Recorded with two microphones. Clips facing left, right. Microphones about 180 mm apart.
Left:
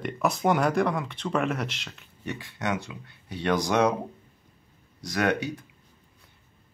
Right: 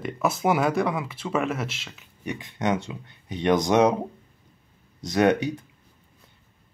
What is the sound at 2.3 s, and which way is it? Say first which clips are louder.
Speech: right 4 dB; 20° right (ahead or behind).